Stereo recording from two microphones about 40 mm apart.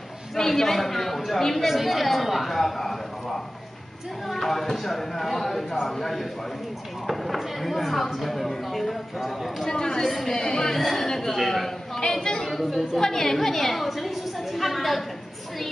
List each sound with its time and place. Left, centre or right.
0.4 s speech: centre
4.3 s speech: centre
9.7 s speech: centre
12.0 s a woman's voice: centre
12.4 s a woman's voice: centre